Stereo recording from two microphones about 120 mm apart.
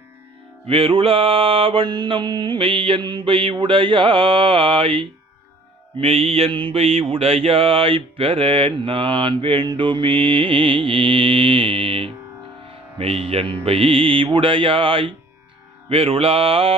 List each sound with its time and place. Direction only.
0.7 s mantra: 50° right (ahead or behind)